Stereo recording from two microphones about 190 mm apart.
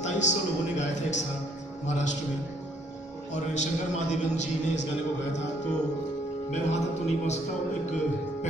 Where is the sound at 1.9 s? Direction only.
35° left (ahead or behind).